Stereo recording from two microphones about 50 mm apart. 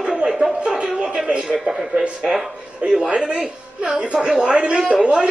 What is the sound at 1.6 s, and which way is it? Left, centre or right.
A woman's voice, centre.